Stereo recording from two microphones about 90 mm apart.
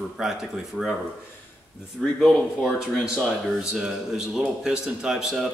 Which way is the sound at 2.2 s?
5° right (ahead or behind).